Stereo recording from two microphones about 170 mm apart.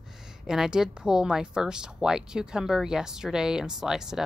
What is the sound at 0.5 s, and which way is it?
A woman's voice, 5° right (ahead or behind).